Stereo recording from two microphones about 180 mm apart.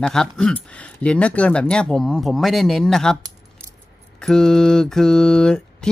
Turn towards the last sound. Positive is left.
turn(degrees=5)  # may be behind; listen again after turning